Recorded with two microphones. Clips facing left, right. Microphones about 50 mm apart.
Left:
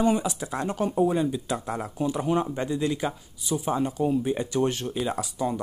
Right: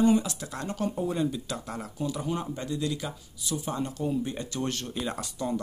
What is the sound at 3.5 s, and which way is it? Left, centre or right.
Speech, centre.